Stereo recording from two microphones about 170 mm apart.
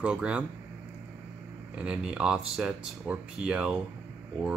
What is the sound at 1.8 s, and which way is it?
A man's voice, 5° right (ahead or behind).